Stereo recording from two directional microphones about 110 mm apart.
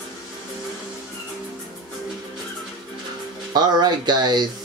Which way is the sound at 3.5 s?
40° right (ahead or behind).